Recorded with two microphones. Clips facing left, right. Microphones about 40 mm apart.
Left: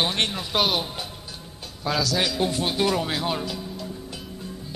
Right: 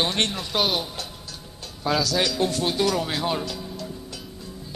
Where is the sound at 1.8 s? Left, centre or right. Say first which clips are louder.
Right 1 dB; centre.